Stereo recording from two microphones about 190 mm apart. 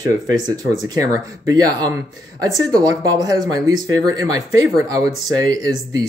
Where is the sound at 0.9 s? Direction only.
15° right (ahead or behind).